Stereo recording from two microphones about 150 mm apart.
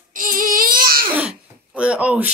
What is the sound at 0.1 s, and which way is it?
Baby cry, 65° right (ahead or behind).